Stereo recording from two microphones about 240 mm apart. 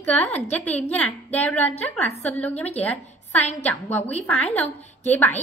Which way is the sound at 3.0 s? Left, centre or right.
Left.